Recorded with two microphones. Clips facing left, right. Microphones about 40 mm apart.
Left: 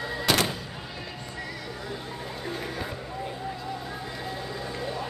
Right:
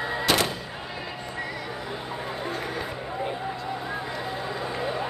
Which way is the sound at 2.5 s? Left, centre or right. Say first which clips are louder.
Even; centre.